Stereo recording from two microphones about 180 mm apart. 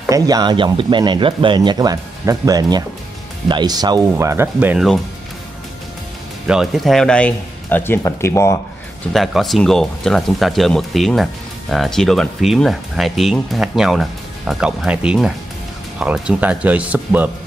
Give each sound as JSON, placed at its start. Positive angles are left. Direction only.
{"t": 0.1, "sound": "speech", "side_deg": -20}
{"t": 6.4, "sound": "speech", "side_deg": -5}
{"t": 9.1, "sound": "speech", "side_deg": 0}